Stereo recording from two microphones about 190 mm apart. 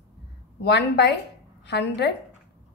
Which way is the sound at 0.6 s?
60° left (ahead or behind).